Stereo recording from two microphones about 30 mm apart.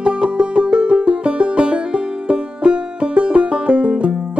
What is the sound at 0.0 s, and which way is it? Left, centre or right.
Music, right.